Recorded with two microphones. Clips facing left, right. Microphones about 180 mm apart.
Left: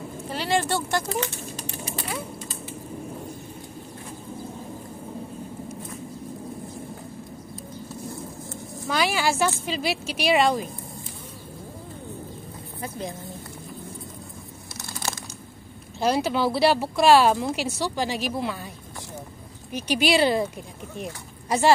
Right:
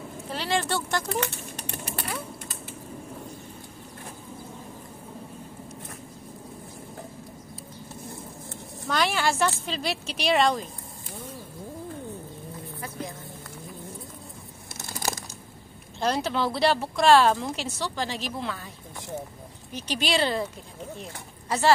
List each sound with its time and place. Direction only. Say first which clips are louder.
0.3 s speech: left 3 dB; 5° left (ahead or behind)
1.2 s bird: left 1 dB; 60° right (ahead or behind)
8.8 s a woman's voice: left 1 dB; 5° left (ahead or behind)
16.0 s speech: left 3 dB; 5° left (ahead or behind)
19.7 s speech: left 5 dB; 10° left (ahead or behind)